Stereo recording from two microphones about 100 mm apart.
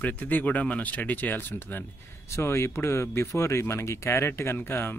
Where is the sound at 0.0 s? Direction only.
15° left (ahead or behind).